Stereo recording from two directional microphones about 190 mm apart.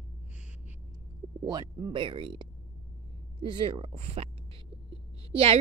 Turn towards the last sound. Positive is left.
turn(degrees=-30)  # may be behind; listen again after turning